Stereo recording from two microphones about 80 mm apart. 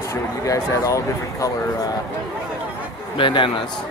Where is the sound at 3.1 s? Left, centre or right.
Left.